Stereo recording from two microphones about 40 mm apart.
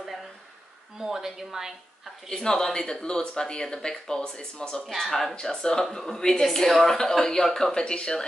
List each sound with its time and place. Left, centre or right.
0.9 s speech: centre
2.2 s speech: centre
4.8 s speech: centre
6.1 s speech: centre